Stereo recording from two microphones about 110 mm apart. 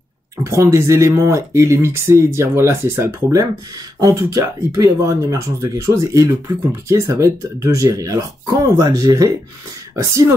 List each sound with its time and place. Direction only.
0.4 s speech: 30° right (ahead or behind)